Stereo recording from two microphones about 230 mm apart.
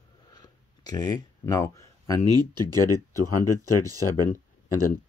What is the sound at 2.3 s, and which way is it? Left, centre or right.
Speech, centre.